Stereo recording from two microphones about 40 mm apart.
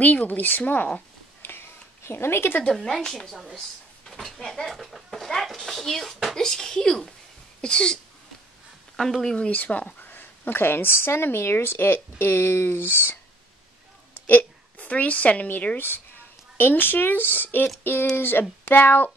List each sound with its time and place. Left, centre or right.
0.0 s speech: left
1.4 s a sound: left
2.0 s speech: left
2.7 s a woman's voice: centre
4.4 s a woman's voice: centre
4.6 s a sound: centre; by 8.0 s left
8.9 s speech: centre
9.5 s speech: left
10.0 s speech: left
14.8 s a woman's voice: left
15.4 s speech: left
16.5 s speech: left